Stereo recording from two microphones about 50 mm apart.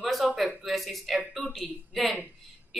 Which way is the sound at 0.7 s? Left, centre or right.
Centre.